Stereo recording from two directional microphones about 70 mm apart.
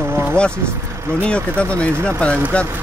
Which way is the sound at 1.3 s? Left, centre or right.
Centre.